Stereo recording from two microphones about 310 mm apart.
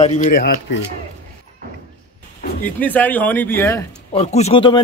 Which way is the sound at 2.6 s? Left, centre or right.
Centre.